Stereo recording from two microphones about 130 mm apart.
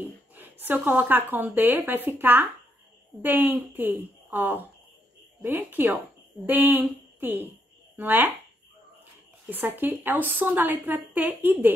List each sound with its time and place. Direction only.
0.4 s speech: 15° right (ahead or behind)
9.5 s speech: 15° right (ahead or behind)